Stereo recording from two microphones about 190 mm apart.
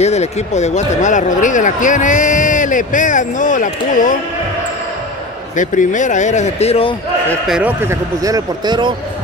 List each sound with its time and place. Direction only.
0.0 s speech: 35° left (ahead or behind)
5.6 s speech: 40° left (ahead or behind)
7.2 s speech: 5° right (ahead or behind); by 8.9 s 25° right (ahead or behind)